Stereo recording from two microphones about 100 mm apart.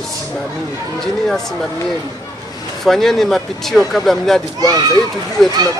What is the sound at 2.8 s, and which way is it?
A man's voice, 5° left (ahead or behind).